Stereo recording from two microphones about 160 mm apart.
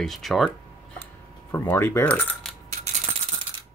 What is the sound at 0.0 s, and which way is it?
Speech, centre (ahead or behind).